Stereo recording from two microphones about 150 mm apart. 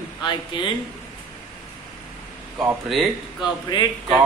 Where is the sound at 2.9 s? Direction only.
Centre (ahead or behind).